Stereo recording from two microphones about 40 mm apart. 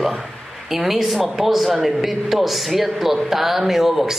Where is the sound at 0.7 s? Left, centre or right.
Centre.